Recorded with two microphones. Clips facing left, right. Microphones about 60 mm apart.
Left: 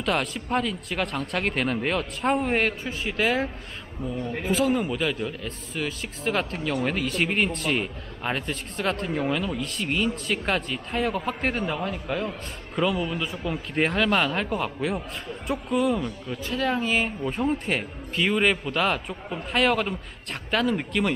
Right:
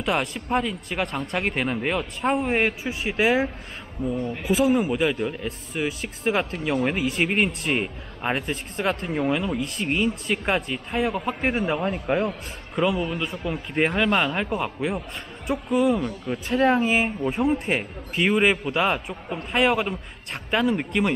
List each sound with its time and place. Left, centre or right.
0.0 s speech: centre
11.8 s speech: right
12.3 s a man's voice: centre
13.9 s a man's voice: centre
16.3 s speech: right
16.8 s speech: centre